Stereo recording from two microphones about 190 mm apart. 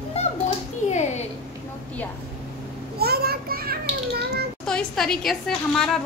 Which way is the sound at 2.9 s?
55° right (ahead or behind).